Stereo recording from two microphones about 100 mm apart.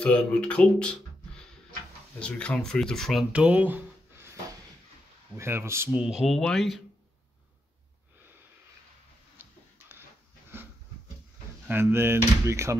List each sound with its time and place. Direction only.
0.0 s speech: 10° left (ahead or behind)
3.3 s a sound: 15° right (ahead or behind)
5.3 s speech: 25° right (ahead or behind)
5.9 s speech: 10° right (ahead or behind)
6.2 s speech: centre (ahead or behind)
9.4 s a sound: 20° right (ahead or behind)
11.6 s speech: 25° right (ahead or behind)